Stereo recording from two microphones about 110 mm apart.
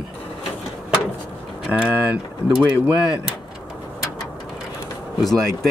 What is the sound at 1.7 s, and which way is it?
Speech, 15° right (ahead or behind).